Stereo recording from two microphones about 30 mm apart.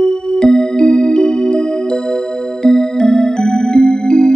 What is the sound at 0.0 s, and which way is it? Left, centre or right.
Music, left.